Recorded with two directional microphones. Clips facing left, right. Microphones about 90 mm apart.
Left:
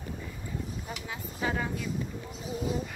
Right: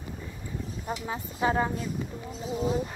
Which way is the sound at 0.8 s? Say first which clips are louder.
Right 6 dB; 35° right (ahead or behind).